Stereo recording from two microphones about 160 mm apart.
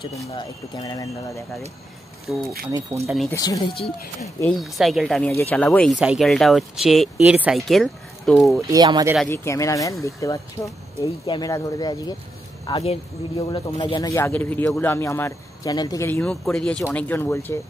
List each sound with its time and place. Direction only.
0.3 s speech: 30° left (ahead or behind)
2.3 s speech: centre (ahead or behind)
3.3 s speech: 20° left (ahead or behind)
4.4 s speech: centre (ahead or behind)
5.3 s speech: 15° left (ahead or behind)
5.9 s speech: 5° right (ahead or behind)
8.5 s speech: 25° right (ahead or behind)
9.3 s speech: 15° left (ahead or behind)
14.1 s speech: 15° left (ahead or behind)
16.1 s speech: 5° left (ahead or behind)